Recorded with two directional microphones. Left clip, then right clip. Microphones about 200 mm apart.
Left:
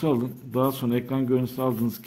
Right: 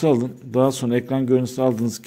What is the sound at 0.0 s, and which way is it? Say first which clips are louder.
Speech: right 6 dB; 20° right (ahead or behind).